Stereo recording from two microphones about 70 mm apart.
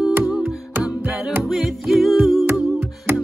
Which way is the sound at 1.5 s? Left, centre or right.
Centre.